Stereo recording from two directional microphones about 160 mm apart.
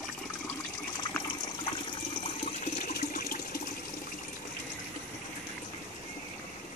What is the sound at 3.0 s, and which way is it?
Water, 65° left (ahead or behind).